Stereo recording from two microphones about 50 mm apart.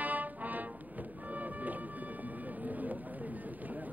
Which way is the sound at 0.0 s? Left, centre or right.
Right.